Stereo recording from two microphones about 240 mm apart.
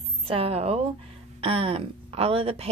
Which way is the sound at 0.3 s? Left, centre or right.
Right.